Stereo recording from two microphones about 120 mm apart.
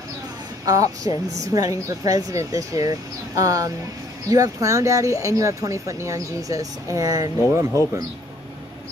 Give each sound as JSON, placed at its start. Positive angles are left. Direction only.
{"t": 0.7, "sound": "a woman's voice", "side_deg": -30}